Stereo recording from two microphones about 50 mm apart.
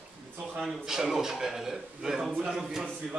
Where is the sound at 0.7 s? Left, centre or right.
Centre.